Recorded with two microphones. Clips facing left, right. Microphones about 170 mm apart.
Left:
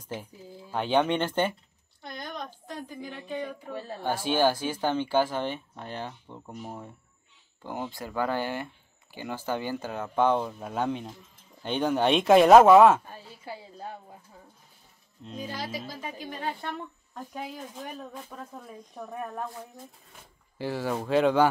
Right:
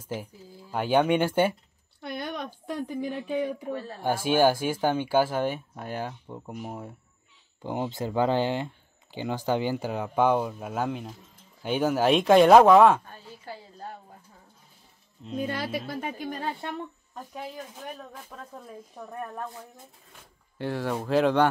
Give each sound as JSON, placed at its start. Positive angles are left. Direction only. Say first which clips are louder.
{"t": 0.0, "sound": "speech", "louder": "right 3 dB", "side_deg": -10}
{"t": 2.0, "sound": "a woman's voice", "louder": "right 5 dB", "side_deg": -65}
{"t": 4.0, "sound": "speech", "louder": "right 3 dB", "side_deg": -10}
{"t": 7.6, "sound": "a woman's voice", "louder": "right 5 dB", "side_deg": -20}
{"t": 15.4, "sound": "a woman's voice", "louder": "right 4 dB", "side_deg": -60}
{"t": 18.3, "sound": "speech", "louder": "even", "side_deg": 5}
{"t": 20.5, "sound": "speech", "louder": "right 1 dB", "side_deg": 0}